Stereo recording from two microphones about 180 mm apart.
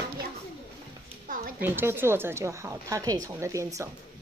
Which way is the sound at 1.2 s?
50° right (ahead or behind).